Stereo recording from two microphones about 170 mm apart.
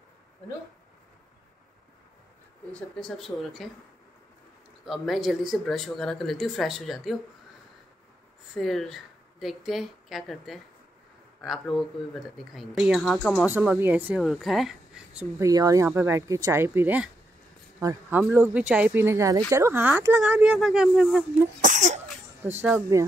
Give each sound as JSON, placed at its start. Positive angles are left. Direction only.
{"t": 2.7, "sound": "speech", "side_deg": 0}
{"t": 4.8, "sound": "speech", "side_deg": 0}
{"t": 8.5, "sound": "speech", "side_deg": 0}
{"t": 13.5, "sound": "speech", "side_deg": -10}
{"t": 15.3, "sound": "speech", "side_deg": -20}
{"t": 21.5, "sound": "speech", "side_deg": -45}
{"t": 22.4, "sound": "speech", "side_deg": -10}